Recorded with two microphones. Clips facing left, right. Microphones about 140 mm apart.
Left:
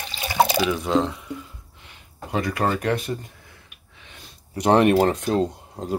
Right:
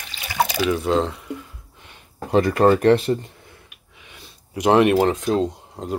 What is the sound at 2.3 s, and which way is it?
Speech, 35° right (ahead or behind).